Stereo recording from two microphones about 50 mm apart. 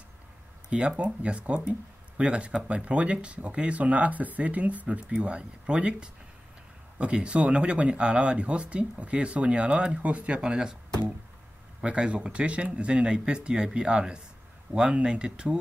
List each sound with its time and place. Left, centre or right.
0.7 s speech: right
5.2 s speech: right
11.8 s speech: right